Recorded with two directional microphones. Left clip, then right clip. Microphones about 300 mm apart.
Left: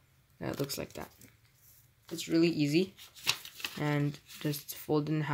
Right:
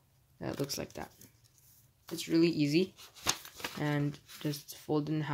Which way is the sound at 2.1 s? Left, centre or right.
Centre.